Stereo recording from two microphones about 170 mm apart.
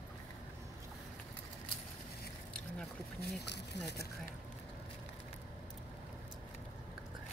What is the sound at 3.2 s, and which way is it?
Speech, 80° left.